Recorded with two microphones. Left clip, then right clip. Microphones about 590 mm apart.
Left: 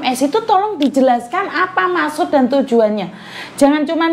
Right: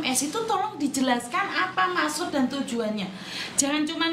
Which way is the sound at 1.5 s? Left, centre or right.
Left.